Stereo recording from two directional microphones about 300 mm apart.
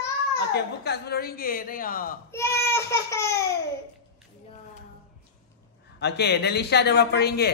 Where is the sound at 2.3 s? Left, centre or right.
Centre.